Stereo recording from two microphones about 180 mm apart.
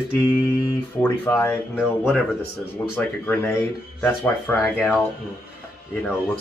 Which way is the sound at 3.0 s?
10° left (ahead or behind).